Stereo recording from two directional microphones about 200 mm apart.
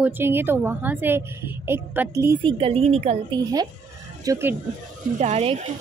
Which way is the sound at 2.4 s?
30° right (ahead or behind).